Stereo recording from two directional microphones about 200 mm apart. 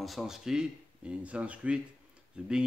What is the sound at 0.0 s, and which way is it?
Speech, centre (ahead or behind).